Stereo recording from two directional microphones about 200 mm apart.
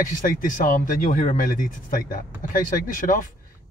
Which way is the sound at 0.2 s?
40° left (ahead or behind).